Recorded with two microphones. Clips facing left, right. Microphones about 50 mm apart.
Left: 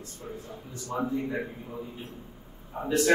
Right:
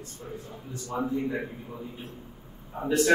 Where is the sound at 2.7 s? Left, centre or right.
Centre.